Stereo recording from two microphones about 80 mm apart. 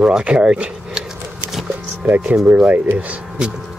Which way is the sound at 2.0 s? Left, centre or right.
Centre.